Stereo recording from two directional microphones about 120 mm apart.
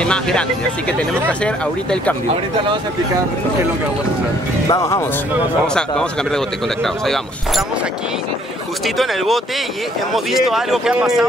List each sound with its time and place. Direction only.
0.0 s speech: 10° left (ahead or behind)
4.6 s speech: 25° left (ahead or behind)
5.7 s speech: 5° left (ahead or behind)
8.8 s speech: centre (ahead or behind)